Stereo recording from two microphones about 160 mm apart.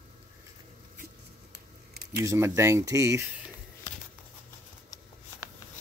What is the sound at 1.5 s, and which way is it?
Keys jangling, 85° right.